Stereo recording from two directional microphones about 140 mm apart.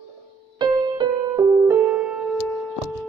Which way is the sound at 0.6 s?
30° right (ahead or behind).